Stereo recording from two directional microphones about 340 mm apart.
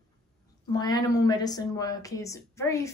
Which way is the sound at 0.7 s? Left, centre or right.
Centre.